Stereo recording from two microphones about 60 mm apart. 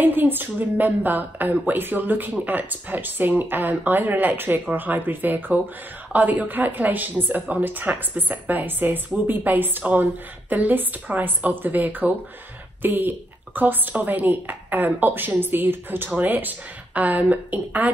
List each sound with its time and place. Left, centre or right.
0.0 s a woman's voice: right